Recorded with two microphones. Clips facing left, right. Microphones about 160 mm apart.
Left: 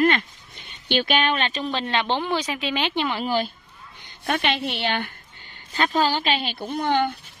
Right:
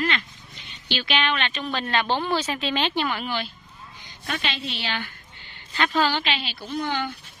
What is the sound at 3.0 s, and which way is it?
Speech, 30° left (ahead or behind).